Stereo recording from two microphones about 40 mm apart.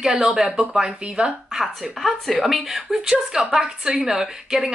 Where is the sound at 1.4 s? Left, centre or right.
Centre.